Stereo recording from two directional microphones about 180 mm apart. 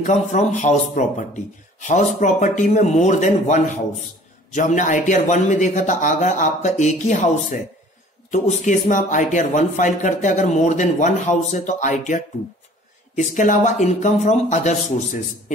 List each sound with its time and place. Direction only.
0.0 s speech: 40° left (ahead or behind)